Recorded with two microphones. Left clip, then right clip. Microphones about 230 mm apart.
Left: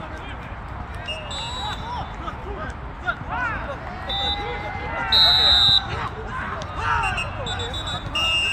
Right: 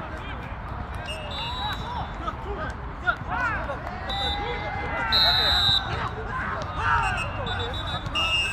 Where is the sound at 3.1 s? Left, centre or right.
Right.